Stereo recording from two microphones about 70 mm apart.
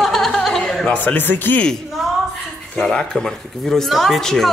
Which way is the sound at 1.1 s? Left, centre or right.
Left.